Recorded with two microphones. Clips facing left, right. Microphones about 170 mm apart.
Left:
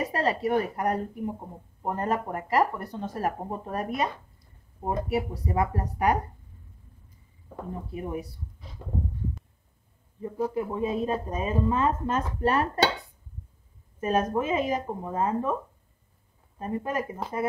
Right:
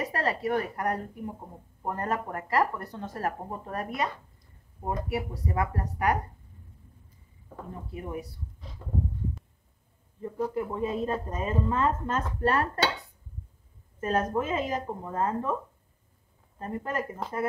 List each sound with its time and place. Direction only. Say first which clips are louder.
0.1 s speech: left 3 dB; 20° left (ahead or behind)
7.9 s speech: left 2 dB; 20° left (ahead or behind)
10.2 s a woman's voice: left 2 dB; 15° left (ahead or behind)
13.9 s a woman's voice: left 2 dB; 15° left (ahead or behind)
16.5 s a woman's voice: left 2 dB; 15° left (ahead or behind)